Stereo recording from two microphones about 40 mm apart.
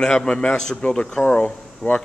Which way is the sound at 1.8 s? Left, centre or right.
Centre.